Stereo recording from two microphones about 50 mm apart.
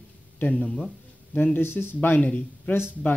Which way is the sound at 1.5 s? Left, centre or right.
Left.